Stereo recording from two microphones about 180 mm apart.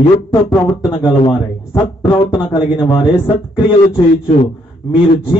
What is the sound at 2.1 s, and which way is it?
Speech, 25° left (ahead or behind).